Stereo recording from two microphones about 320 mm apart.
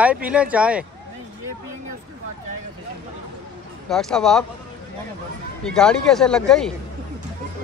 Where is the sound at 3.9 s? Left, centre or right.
Centre.